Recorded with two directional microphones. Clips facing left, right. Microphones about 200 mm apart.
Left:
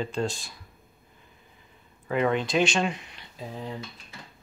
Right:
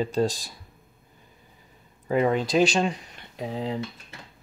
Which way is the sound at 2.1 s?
40° right (ahead or behind).